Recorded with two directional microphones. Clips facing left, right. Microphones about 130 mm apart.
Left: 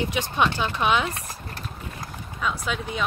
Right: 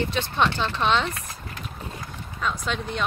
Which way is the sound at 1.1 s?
35° left (ahead or behind).